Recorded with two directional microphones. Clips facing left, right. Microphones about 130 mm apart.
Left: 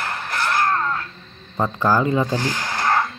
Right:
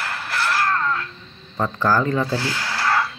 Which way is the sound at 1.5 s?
15° left (ahead or behind).